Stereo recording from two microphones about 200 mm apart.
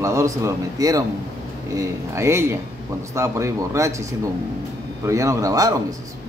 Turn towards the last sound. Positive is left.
turn(degrees=-15)  # may be behind; listen again after turning